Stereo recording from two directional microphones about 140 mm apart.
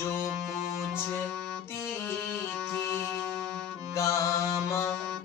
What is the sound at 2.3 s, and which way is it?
Music, 15° left (ahead or behind).